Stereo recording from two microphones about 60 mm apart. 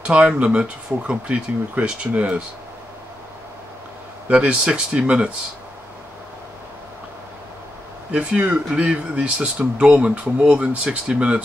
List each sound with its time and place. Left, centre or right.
0.0 s speech: centre
4.3 s speech: centre
8.1 s speech: centre